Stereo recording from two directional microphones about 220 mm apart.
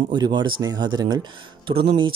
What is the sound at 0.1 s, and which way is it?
Speech, 20° right (ahead or behind).